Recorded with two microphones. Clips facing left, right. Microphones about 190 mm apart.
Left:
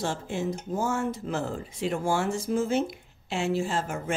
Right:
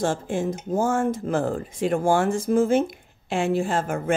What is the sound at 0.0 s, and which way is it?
Speech, 50° right (ahead or behind).